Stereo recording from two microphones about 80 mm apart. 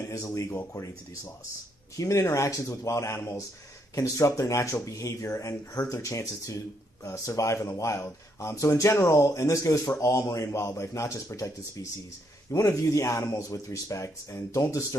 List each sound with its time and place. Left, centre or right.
0.0 s a man's voice: left
2.0 s a man's voice: left